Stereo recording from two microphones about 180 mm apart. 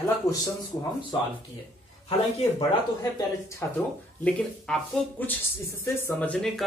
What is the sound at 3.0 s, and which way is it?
Speech, 20° left (ahead or behind).